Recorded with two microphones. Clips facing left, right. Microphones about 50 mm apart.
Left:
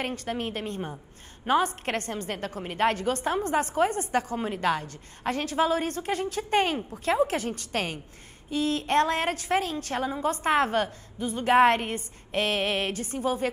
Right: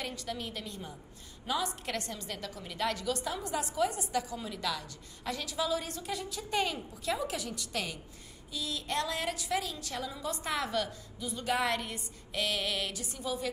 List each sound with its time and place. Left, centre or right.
0.0 s a woman's voice: left